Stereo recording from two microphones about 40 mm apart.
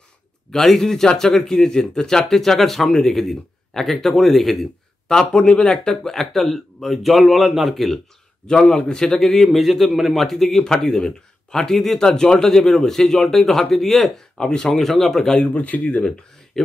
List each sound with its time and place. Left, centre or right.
0.5 s speech: centre
5.0 s speech: left; by 8.0 s centre
8.5 s speech: centre
14.4 s speech: left
14.8 s speech: centre
15.4 s speech: left
16.6 s speech: centre